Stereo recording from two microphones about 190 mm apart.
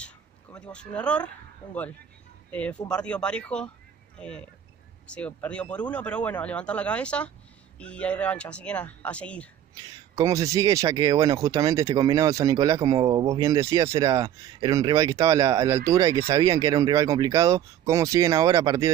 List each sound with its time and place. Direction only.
0.6 s speech: 5° left (ahead or behind)
10.1 s speech: 15° right (ahead or behind)